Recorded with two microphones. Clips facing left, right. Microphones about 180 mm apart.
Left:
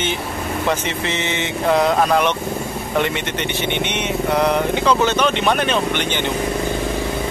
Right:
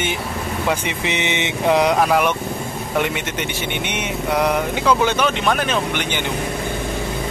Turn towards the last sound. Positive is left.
turn(degrees=-5)  # may be behind; listen again after turning